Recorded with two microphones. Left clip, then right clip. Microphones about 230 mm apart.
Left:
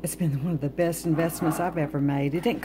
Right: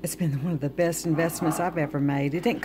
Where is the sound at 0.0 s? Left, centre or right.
Centre.